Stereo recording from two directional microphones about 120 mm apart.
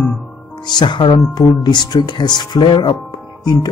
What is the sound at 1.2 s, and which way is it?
Speech, 30° left (ahead or behind).